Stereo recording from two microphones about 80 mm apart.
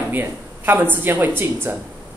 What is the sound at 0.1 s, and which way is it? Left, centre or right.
A woman's voice, right.